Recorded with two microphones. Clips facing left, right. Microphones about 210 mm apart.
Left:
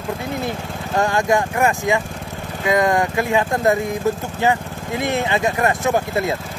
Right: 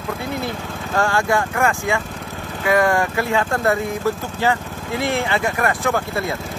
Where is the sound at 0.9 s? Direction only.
20° left (ahead or behind).